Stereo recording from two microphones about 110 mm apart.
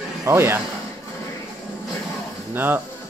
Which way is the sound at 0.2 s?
25° right (ahead or behind).